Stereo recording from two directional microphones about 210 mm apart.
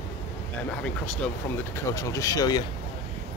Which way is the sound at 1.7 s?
15° left (ahead or behind).